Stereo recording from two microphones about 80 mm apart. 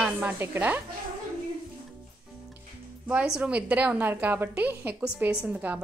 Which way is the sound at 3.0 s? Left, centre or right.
Centre.